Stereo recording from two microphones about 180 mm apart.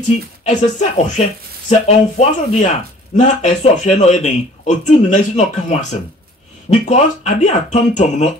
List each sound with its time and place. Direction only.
0.4 s speech: 40° left (ahead or behind)